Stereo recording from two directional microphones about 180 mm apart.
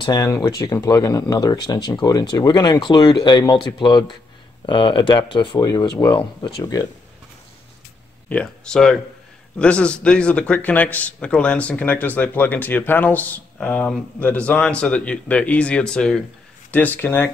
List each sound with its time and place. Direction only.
0.0 s speech: 20° left (ahead or behind)
8.3 s speech: 5° left (ahead or behind)